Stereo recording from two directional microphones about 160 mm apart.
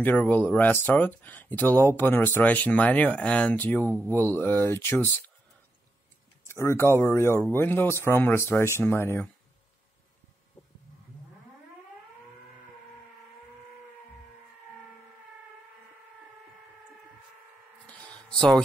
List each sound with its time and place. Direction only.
0.0 s speech: 10° left (ahead or behind)
6.4 s speech: 15° left (ahead or behind)
17.8 s a sound: 5° left (ahead or behind)